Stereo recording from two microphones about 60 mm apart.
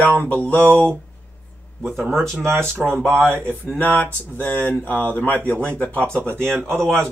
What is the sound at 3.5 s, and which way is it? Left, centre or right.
Speech, left.